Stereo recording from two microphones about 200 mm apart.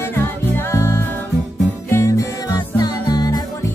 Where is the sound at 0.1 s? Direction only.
10° left (ahead or behind).